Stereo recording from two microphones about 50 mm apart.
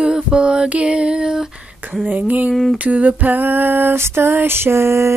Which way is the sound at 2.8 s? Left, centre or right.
Right.